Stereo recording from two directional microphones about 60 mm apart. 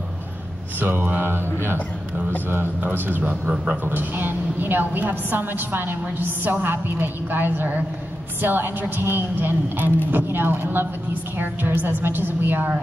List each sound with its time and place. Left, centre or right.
0.7 s speech: right